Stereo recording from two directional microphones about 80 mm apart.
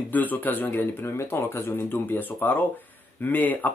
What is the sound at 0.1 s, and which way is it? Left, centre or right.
Speech, left.